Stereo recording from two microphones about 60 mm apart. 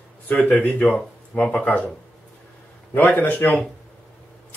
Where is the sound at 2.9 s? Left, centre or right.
Left.